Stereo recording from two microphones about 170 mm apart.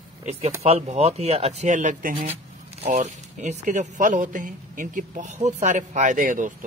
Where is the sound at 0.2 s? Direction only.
40° right (ahead or behind).